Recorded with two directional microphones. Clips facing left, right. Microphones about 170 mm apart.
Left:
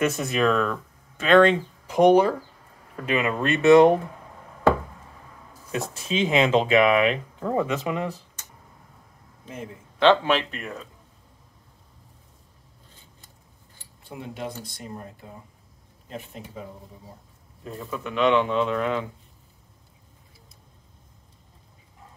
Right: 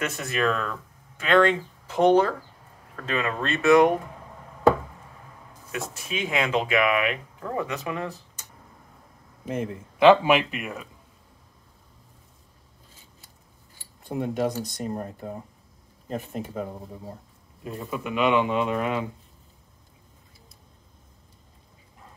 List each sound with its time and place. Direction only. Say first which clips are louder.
0.0 s speech: left 4 dB; 20° left (ahead or behind)
5.7 s speech: left 4 dB; 25° left (ahead or behind)
9.9 s speech: right 2 dB; 10° right (ahead or behind)
14.0 s speech: right 8 dB; 45° right (ahead or behind)
17.6 s speech: right 1 dB; 15° right (ahead or behind)